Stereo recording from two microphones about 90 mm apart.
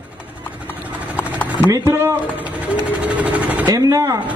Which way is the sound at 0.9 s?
15° right (ahead or behind).